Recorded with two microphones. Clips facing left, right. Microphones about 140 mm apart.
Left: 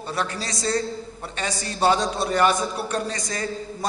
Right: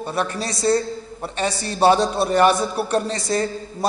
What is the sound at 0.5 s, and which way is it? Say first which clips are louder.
A man's voice: right 6 dB; 25° right (ahead or behind).